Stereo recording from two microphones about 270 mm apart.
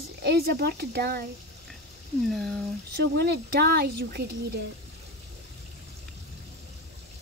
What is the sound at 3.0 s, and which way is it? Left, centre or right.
Speech, right.